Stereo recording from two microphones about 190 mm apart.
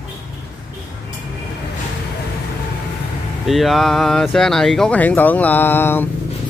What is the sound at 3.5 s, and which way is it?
Speech, centre (ahead or behind).